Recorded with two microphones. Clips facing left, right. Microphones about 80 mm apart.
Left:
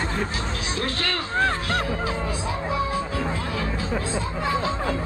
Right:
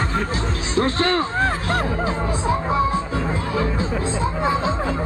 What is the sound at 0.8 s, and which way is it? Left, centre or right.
Speech, right.